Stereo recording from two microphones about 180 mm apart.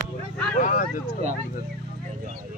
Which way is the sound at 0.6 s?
45° left (ahead or behind).